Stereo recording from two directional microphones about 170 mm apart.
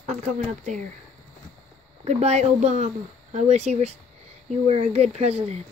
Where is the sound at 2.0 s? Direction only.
40° right (ahead or behind).